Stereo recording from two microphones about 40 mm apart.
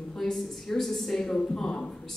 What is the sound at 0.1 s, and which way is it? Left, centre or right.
A man's voice, centre.